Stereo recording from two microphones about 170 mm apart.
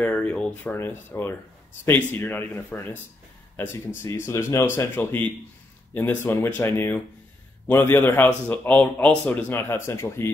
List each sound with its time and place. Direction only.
0.0 s speech: 10° left (ahead or behind)